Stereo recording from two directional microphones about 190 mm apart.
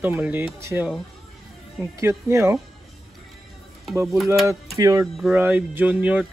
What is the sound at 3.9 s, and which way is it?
Speech, 15° right (ahead or behind).